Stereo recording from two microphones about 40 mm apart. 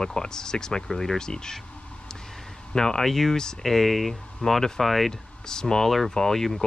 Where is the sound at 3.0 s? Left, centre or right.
Centre.